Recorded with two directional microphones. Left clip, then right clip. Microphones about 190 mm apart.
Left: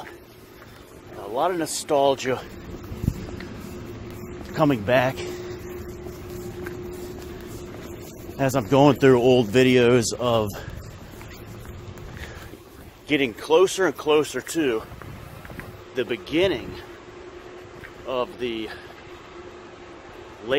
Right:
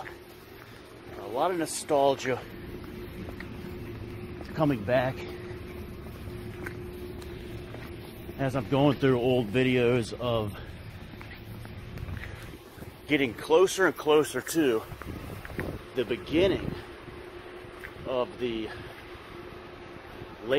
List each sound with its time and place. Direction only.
1.3 s speech: 30° left (ahead or behind)
4.6 s speech: 30° left (ahead or behind)
8.4 s speech: 40° left (ahead or behind)
13.1 s speech: 25° left (ahead or behind)
14.2 s speech: 5° left (ahead or behind)
16.0 s a man's voice: 5° right (ahead or behind)
18.0 s a man's voice: 5° right (ahead or behind)